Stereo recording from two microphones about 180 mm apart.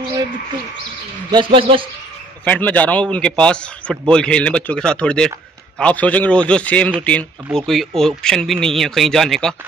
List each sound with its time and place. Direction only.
1.3 s speech: 30° right (ahead or behind)
2.4 s a man's voice: 10° left (ahead or behind)